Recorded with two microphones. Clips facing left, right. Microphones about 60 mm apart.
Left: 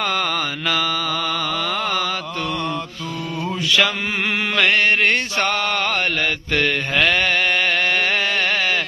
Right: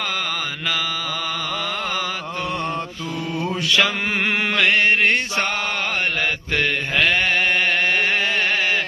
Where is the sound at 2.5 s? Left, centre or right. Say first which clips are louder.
Left 1 dB; right.